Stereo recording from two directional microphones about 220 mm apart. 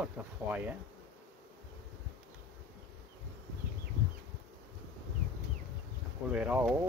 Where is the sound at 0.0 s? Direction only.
5° right (ahead or behind).